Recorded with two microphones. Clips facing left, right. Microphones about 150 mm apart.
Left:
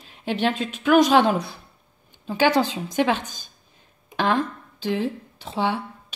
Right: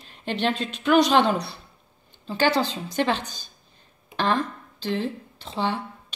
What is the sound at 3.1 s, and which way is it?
Speech, 50° left (ahead or behind).